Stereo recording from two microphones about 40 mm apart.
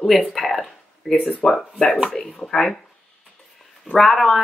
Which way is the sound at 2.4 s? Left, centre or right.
Centre.